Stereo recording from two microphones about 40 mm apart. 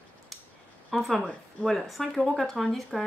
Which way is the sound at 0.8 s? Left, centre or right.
Centre.